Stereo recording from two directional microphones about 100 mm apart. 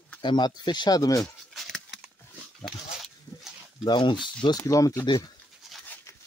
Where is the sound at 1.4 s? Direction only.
5° left (ahead or behind).